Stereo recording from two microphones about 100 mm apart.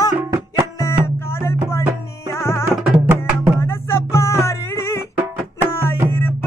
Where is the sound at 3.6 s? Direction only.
25° left (ahead or behind).